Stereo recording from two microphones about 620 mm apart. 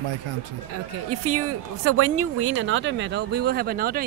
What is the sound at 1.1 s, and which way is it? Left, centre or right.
Speech, right.